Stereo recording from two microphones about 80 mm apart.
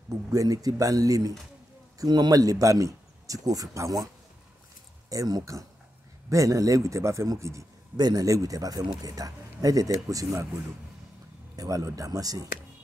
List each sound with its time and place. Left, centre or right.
0.1 s speech: right
2.0 s speech: right
5.1 s a man's voice: right
8.0 s speech: right
11.5 s speech: right